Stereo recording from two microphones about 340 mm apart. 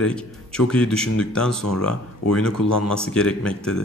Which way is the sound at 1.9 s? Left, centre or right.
Left.